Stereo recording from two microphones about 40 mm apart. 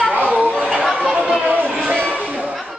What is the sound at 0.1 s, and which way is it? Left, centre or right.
Chatter, right.